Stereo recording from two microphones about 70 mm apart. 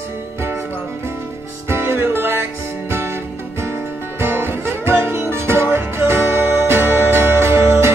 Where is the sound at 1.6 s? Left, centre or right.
Right.